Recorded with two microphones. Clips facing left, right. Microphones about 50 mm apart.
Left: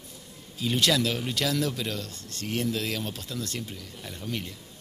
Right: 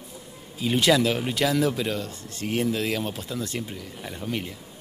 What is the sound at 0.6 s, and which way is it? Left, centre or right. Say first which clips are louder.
Speech: right 4 dB; centre.